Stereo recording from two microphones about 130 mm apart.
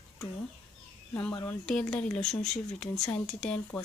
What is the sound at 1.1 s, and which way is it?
Speech, 15° left (ahead or behind).